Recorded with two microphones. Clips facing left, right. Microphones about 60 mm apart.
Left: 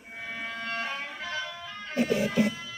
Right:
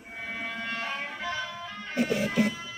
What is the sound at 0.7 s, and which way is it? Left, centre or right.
Music, centre.